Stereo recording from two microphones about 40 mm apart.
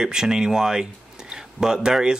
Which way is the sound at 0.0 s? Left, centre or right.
Centre.